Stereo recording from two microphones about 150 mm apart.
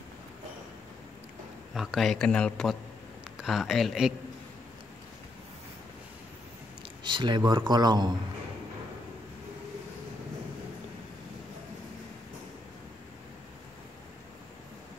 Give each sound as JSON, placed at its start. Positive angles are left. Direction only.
{"t": 1.7, "sound": "speech", "side_deg": -5}
{"t": 7.0, "sound": "a man's voice", "side_deg": -30}